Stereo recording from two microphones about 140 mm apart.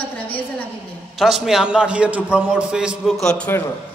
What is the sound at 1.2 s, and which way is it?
A man's voice, centre (ahead or behind).